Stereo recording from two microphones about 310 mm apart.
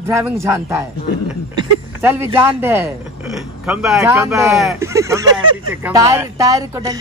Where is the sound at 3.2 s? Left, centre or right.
Centre.